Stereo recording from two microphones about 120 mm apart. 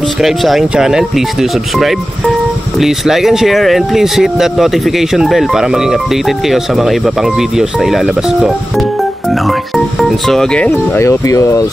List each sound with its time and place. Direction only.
0.2 s speech: centre (ahead or behind)
11.0 s speech: 25° left (ahead or behind)